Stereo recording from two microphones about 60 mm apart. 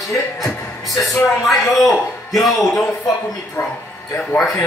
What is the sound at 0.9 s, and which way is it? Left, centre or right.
A man's voice, centre.